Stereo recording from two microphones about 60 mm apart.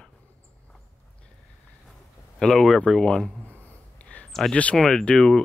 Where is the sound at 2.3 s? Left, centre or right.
Centre.